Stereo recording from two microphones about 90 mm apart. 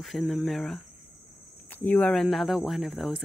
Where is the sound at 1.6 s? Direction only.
20° left (ahead or behind).